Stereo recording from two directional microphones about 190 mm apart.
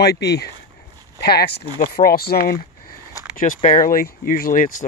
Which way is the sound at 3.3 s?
45° left (ahead or behind).